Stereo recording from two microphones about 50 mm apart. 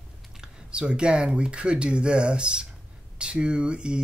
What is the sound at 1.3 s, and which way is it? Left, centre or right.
Speech, right.